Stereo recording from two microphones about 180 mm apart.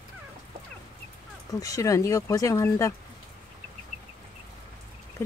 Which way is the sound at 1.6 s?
20° left (ahead or behind).